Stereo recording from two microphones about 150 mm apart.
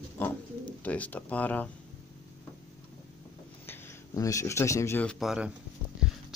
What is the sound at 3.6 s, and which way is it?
Speech, 20° left (ahead or behind).